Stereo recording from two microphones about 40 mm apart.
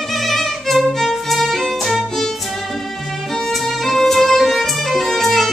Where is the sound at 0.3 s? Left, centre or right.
Centre.